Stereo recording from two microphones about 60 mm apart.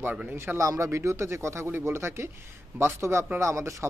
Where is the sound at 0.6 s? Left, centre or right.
Right.